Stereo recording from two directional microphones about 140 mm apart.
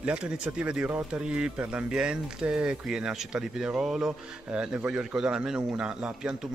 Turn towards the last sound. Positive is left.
turn(degrees=-5)  # may be behind; listen again after turning